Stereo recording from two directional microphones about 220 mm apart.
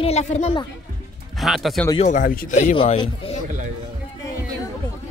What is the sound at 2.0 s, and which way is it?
Speech, 35° left (ahead or behind).